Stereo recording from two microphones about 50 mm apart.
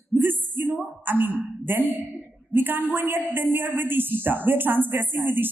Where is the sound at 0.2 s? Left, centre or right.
Right.